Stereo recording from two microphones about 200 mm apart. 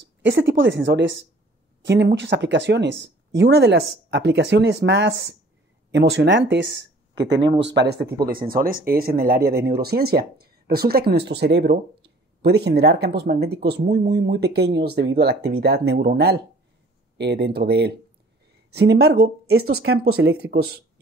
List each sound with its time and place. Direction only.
0.2 s speech: 60° right (ahead or behind)